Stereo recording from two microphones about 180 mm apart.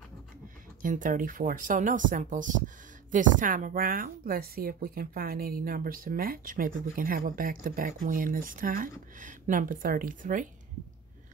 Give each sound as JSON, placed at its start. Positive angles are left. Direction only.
{"t": 0.8, "sound": "a woman's voice", "side_deg": -45}